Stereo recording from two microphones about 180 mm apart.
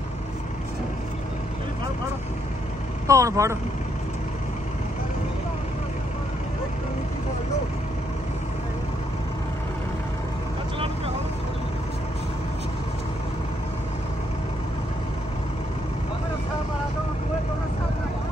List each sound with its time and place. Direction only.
3.1 s speech: 15° right (ahead or behind)